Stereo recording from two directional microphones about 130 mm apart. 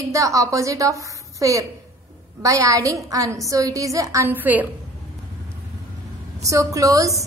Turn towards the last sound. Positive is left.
turn(degrees=-25)  # may be behind; listen again after turning